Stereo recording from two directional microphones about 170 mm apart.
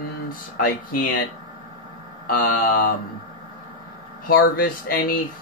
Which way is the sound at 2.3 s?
55° left (ahead or behind).